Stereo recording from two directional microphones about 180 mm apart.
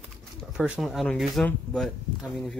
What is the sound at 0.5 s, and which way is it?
Speech, 5° right (ahead or behind).